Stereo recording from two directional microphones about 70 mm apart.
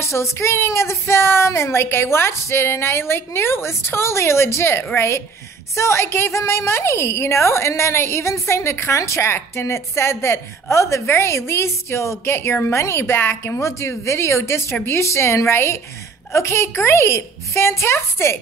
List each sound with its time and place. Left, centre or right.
0.0 s a woman's voice: left